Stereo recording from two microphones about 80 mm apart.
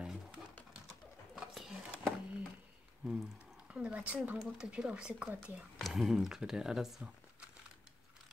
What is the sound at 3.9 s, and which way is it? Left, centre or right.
Speech, centre.